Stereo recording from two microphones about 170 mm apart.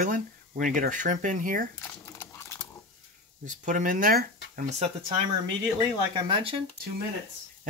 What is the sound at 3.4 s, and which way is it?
Speech, 50° right (ahead or behind).